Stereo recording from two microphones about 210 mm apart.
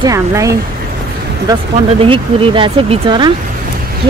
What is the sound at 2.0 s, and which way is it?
Speech, 25° right (ahead or behind).